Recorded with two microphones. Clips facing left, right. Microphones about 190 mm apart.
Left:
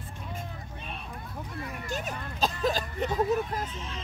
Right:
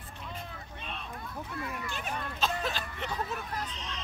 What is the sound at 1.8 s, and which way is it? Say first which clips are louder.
Speech: left 2 dB; 40° left (ahead or behind).